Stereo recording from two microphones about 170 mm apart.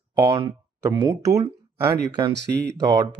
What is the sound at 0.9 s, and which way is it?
Speech, 20° right (ahead or behind).